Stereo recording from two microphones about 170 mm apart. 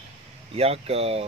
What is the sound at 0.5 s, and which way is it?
Speech, 35° right (ahead or behind).